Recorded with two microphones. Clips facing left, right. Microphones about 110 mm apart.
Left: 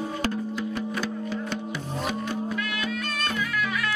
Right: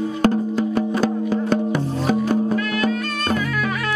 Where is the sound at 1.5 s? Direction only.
50° right (ahead or behind).